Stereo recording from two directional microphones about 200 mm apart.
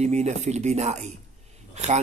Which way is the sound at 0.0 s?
35° right (ahead or behind).